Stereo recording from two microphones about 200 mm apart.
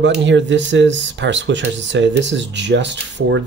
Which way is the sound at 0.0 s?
65° right (ahead or behind).